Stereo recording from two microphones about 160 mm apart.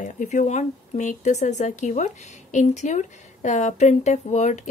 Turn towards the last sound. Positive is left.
turn(degrees=50)  # may be behind; listen again after turning